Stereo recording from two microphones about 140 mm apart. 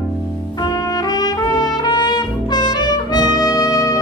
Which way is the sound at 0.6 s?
30° left (ahead or behind).